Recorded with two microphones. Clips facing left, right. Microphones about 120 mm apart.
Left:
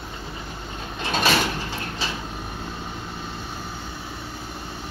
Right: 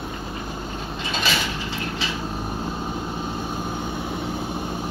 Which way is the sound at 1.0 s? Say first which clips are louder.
Left 5 dB; 50° left (ahead or behind).